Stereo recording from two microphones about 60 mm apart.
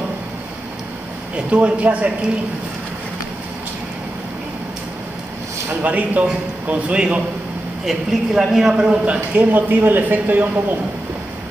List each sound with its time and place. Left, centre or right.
1.3 s speech: right
5.8 s speech: right
7.8 s speech: centre
8.9 s speech: centre
9.5 s speech: right